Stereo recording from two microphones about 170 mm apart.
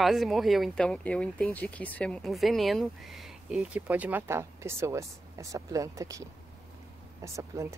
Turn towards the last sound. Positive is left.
turn(degrees=-15)  # may be behind; listen again after turning